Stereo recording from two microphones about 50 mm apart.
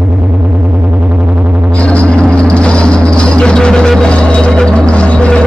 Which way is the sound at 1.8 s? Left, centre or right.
Left.